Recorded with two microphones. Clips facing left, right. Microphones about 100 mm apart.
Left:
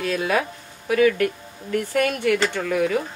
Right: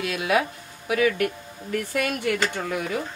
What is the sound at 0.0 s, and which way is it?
Speech, 40° left (ahead or behind).